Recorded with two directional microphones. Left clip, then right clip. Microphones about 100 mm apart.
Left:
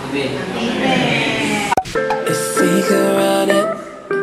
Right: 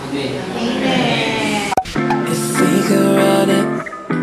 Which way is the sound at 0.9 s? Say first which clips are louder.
Even; 20° right (ahead or behind).